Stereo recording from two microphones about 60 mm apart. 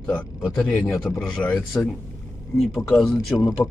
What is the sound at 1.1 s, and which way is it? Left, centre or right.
Speech, centre.